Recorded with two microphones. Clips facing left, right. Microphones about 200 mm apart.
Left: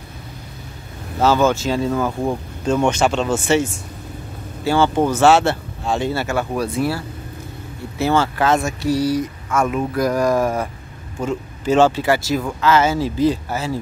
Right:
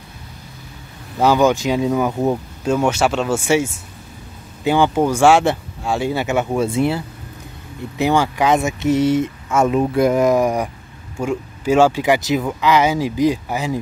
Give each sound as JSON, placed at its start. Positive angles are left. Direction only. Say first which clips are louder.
{"t": 1.2, "sound": "speech", "louder": "right 1 dB", "side_deg": -15}
{"t": 2.6, "sound": "speech", "louder": "even", "side_deg": -5}